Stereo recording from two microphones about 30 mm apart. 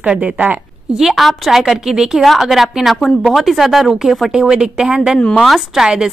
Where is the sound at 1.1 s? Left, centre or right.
Centre.